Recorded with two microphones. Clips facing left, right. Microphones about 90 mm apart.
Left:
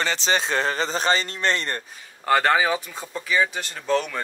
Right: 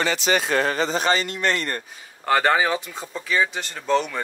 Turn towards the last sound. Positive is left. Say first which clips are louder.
# right 2 dB
turn(degrees=0)  # may be behind; listen again after turning